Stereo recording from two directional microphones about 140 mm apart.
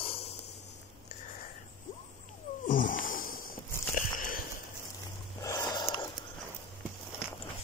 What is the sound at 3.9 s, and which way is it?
Biting, 75° left (ahead or behind).